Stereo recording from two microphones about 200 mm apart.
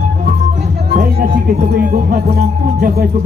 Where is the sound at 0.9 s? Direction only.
45° right (ahead or behind).